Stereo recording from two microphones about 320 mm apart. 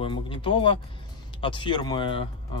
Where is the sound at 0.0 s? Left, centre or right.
Centre.